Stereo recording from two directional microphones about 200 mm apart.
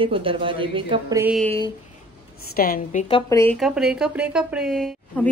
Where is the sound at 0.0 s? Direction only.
25° right (ahead or behind).